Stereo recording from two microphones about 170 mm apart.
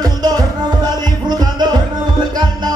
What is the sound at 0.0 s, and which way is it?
Music, 25° right (ahead or behind).